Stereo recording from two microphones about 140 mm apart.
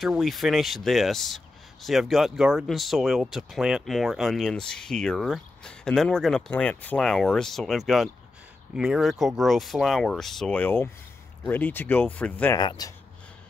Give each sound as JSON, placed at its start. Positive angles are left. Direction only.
{"t": 0.0, "sound": "speech", "side_deg": 0}
{"t": 12.5, "sound": "speech", "side_deg": 30}